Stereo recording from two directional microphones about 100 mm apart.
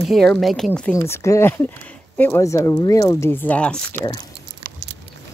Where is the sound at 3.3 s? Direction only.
15° left (ahead or behind).